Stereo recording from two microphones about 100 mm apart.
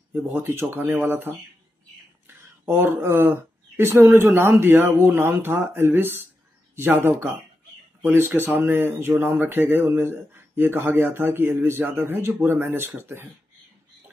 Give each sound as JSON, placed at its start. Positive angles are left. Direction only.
{"t": 0.3, "sound": "speech", "side_deg": -20}